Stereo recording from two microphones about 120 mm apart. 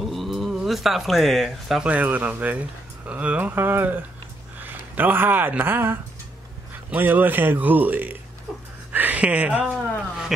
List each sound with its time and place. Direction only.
0.0 s speech: centre (ahead or behind)